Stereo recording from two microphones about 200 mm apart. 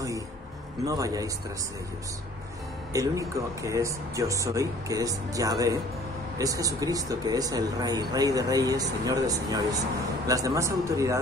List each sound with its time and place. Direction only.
0.8 s speech: 15° right (ahead or behind)
2.9 s speech: 15° right (ahead or behind)